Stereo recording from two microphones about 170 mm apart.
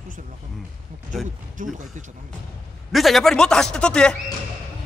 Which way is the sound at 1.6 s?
50° right (ahead or behind).